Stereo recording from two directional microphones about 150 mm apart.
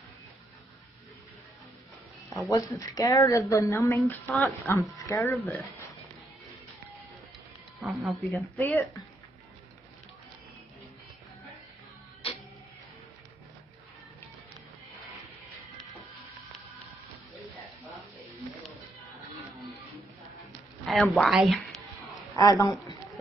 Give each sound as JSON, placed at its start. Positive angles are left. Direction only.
{"t": 2.5, "sound": "a woman's voice", "side_deg": 25}
{"t": 7.8, "sound": "speech", "side_deg": 0}
{"t": 8.5, "sound": "speech", "side_deg": 10}
{"t": 20.8, "sound": "a woman's voice", "side_deg": 0}
{"t": 22.3, "sound": "a woman's voice", "side_deg": 25}